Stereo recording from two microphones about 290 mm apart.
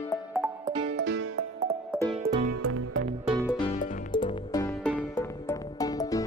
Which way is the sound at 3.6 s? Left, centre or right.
Left.